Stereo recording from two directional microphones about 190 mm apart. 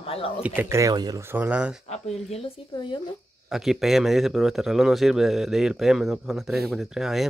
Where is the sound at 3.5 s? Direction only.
Centre (ahead or behind).